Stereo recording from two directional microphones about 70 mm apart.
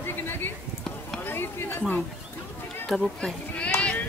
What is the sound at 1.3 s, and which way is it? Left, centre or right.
Speech, left.